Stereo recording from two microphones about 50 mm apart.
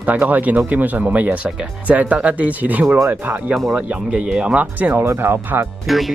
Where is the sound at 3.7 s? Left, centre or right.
Centre.